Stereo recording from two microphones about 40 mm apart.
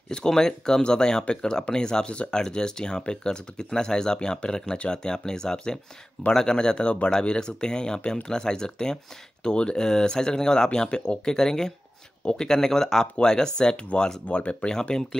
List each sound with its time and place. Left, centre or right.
0.1 s speech: centre
14.8 s speech: centre